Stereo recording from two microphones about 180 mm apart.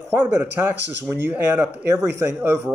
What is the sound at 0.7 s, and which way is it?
Speech, 75° right (ahead or behind).